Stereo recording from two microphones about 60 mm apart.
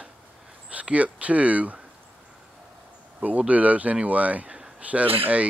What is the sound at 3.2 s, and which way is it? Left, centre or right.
Speech, right.